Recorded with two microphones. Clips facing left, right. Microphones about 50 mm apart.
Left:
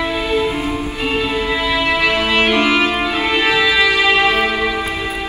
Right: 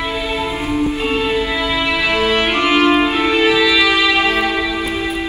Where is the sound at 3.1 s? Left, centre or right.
Left.